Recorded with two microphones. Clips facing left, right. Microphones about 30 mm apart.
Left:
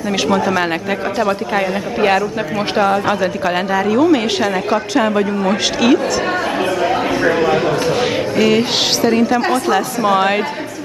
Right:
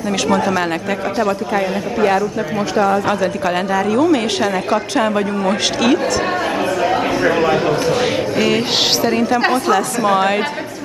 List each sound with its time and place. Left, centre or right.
0.3 s a woman's voice: centre
3.1 s a woman's voice: centre